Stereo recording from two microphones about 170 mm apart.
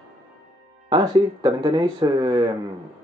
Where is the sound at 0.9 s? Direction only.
30° right (ahead or behind).